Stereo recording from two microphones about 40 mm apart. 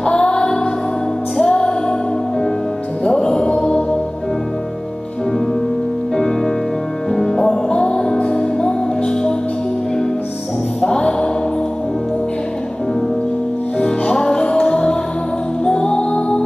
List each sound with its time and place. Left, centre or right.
0.0 s music: left
3.0 s music: centre
6.1 s music: centre
10.8 s music: left
13.7 s music: left